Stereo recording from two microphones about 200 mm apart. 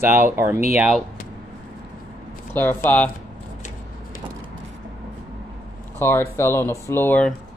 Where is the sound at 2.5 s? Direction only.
10° left (ahead or behind).